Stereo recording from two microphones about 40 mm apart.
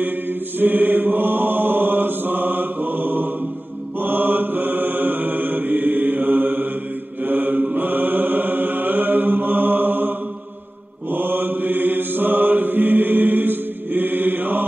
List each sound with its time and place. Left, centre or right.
0.6 s mantra: right